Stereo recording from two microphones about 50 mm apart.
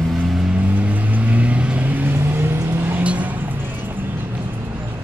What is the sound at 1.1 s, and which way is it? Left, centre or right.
Vehicle, right.